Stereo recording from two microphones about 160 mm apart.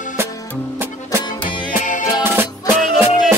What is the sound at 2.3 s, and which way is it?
Music, 15° right (ahead or behind).